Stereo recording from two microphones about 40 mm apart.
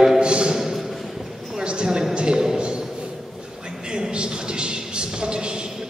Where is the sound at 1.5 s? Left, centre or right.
Centre.